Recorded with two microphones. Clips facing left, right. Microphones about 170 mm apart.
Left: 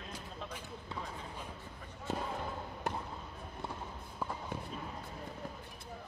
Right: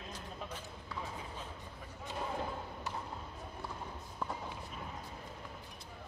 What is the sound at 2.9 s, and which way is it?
Basketball bounce, 55° left (ahead or behind).